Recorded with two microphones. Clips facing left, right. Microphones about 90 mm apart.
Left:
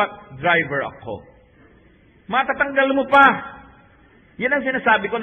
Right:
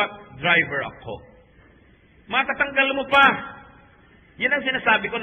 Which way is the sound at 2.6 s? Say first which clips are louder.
Left 3 dB; 25° left (ahead or behind).